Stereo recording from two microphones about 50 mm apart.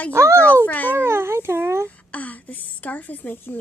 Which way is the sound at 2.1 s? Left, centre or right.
Left.